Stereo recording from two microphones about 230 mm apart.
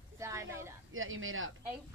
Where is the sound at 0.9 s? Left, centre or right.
Right.